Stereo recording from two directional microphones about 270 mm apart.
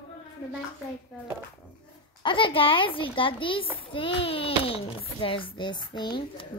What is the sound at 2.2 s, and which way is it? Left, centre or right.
A child's voice, centre.